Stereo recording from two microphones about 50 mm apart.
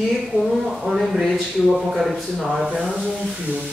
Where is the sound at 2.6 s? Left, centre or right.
Centre.